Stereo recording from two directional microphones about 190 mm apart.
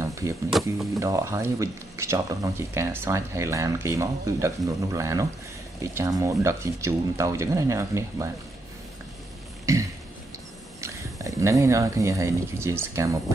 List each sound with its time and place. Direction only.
0.0 s a sound: 15° right (ahead or behind)
0.9 s speech: 15° right (ahead or behind)
9.7 s throat clearing: 15° right (ahead or behind)
10.8 s speech: 15° right (ahead or behind)